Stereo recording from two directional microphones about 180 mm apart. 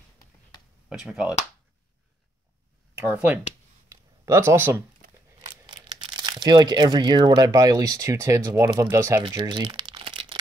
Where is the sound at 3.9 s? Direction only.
15° right (ahead or behind).